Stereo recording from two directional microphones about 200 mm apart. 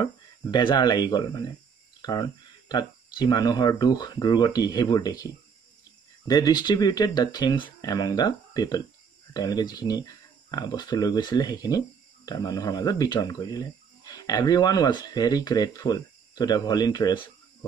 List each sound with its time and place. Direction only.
0.0 s speech: 25° left (ahead or behind)
2.0 s cricket: 20° left (ahead or behind)
2.7 s speech: 20° left (ahead or behind)